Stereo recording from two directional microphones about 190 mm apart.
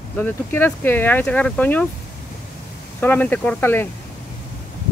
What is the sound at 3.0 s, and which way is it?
Speech, 10° left (ahead or behind).